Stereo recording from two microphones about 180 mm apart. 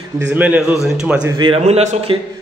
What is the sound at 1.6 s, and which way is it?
Speech, 40° right (ahead or behind).